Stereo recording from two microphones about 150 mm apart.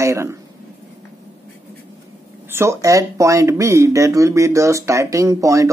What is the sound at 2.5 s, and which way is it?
Speech, 20° right (ahead or behind).